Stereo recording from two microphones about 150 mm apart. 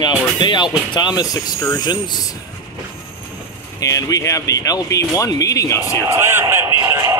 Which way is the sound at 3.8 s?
20° left (ahead or behind).